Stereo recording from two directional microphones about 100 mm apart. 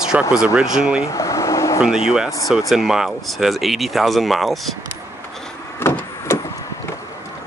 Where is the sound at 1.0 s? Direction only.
35° left (ahead or behind).